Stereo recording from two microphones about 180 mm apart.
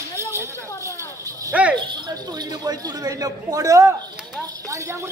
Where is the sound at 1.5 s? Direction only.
10° right (ahead or behind).